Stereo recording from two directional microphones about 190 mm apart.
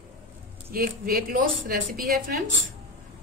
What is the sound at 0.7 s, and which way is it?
A woman's voice, 50° right (ahead or behind).